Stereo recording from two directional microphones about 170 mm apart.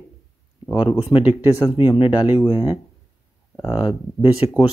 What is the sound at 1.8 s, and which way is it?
Speech, 30° left (ahead or behind).